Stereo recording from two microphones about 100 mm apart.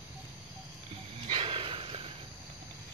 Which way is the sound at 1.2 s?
60° right (ahead or behind).